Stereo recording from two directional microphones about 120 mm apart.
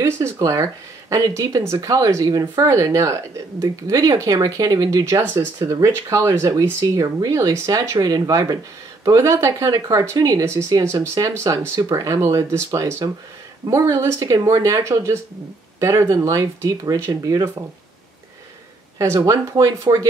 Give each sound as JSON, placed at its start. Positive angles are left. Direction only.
{"t": 0.0, "sound": "speech", "side_deg": -25}
{"t": 18.9, "sound": "speech", "side_deg": -25}